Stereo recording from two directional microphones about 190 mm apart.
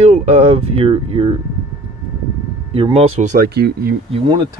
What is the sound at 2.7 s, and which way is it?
Speech, 30° right (ahead or behind).